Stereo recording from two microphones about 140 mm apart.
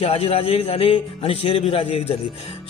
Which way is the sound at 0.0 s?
45° left (ahead or behind).